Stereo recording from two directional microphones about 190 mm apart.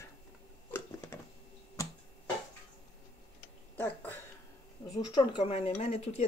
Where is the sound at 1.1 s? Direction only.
15° left (ahead or behind).